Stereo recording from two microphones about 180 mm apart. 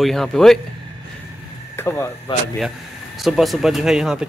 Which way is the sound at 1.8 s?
15° left (ahead or behind).